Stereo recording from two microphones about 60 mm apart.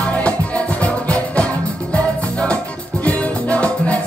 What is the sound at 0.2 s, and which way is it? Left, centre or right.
Music, left.